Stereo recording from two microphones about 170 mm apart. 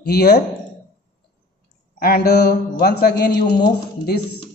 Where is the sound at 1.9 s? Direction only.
65° left (ahead or behind).